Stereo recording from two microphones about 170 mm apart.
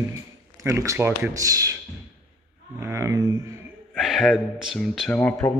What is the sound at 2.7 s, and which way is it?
Speech, 15° right (ahead or behind).